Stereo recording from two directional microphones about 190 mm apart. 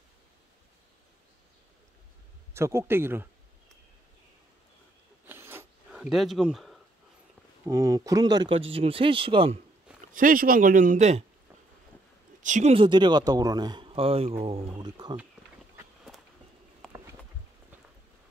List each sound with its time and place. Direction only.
2.5 s speech: 15° right (ahead or behind)
5.2 s a sound: 10° right (ahead or behind)
7.6 s speech: 15° right (ahead or behind)
10.1 s speech: 45° right (ahead or behind)
12.4 s speech: 35° right (ahead or behind); by 15.1 s 20° right (ahead or behind)
16.8 s a sound: 5° left (ahead or behind)